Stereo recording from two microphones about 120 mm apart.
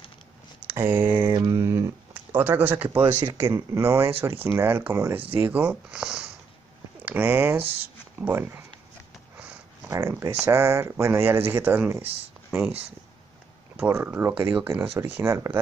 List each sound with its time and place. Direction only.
0.7 s speech: 15° right (ahead or behind)
1.3 s a sound: 25° right (ahead or behind)
3.0 s speech: 15° right (ahead or behind)
9.4 s a sound: 10° right (ahead or behind)
9.9 s speech: 25° right (ahead or behind)
13.8 s speech: 15° right (ahead or behind)